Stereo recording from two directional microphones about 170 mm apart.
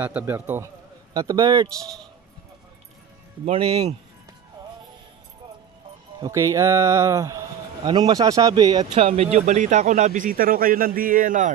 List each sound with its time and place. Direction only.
0.0 s a man's voice: 10° right (ahead or behind)
1.1 s speech: 25° right (ahead or behind)
3.5 s speech: 20° right (ahead or behind)
6.2 s speech: 20° right (ahead or behind)
8.9 s speech: 35° right (ahead or behind)